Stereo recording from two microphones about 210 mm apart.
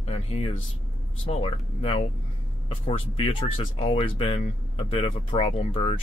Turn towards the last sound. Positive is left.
turn(degrees=25)  # may be behind; listen again after turning